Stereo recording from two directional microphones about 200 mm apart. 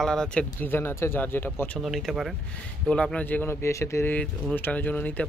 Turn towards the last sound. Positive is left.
turn(degrees=10)  # may be behind; listen again after turning